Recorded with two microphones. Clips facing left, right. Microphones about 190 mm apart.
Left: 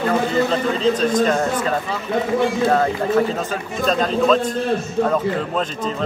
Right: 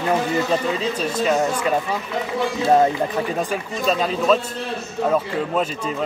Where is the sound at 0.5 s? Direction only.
10° right (ahead or behind).